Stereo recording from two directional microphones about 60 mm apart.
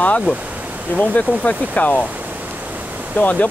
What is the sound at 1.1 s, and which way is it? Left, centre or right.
Speech, left.